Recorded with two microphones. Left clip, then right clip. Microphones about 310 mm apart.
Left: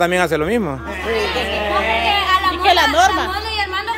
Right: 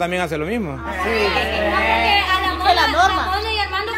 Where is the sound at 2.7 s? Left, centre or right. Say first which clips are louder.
Left 2 dB; left.